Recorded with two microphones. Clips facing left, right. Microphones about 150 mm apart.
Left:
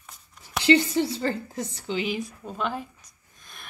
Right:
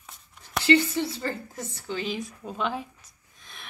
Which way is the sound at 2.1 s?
Centre (ahead or behind).